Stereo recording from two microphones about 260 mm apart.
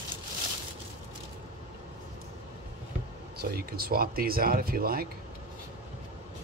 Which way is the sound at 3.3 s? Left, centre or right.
Right.